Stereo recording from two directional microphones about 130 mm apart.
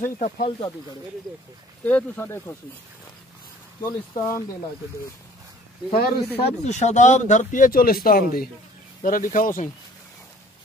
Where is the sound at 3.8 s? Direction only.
20° left (ahead or behind).